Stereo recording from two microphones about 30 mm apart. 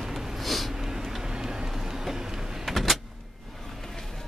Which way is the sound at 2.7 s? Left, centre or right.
Centre.